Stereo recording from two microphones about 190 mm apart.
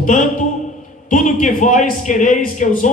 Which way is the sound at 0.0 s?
40° left (ahead or behind).